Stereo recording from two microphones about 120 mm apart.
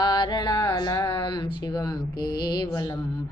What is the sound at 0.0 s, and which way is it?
Music, 40° left (ahead or behind).